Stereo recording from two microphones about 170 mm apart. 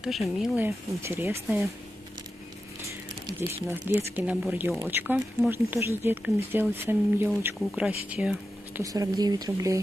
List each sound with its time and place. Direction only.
0.0 s speech: centre (ahead or behind)
0.6 s speech: 15° right (ahead or behind)
3.3 s speech: 15° right (ahead or behind)
8.8 s speech: 20° right (ahead or behind)